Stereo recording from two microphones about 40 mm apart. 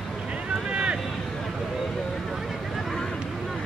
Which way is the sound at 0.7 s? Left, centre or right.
Right.